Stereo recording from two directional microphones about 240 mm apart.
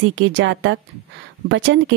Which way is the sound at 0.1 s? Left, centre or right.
Right.